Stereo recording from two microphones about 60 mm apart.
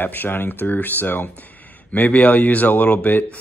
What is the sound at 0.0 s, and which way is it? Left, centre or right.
Speech, left.